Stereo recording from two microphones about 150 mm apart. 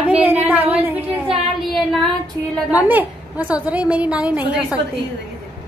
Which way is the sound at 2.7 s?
10° right (ahead or behind).